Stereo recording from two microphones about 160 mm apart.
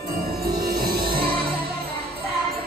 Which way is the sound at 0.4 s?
75° right (ahead or behind).